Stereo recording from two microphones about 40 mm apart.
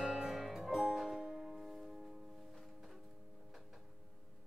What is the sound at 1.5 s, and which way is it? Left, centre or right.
Music, centre.